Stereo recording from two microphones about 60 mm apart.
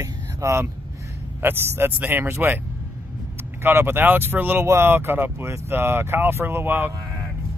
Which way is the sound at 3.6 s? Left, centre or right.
Right.